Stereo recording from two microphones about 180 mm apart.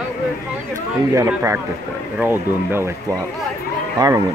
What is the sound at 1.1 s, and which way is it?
Speech, 15° right (ahead or behind).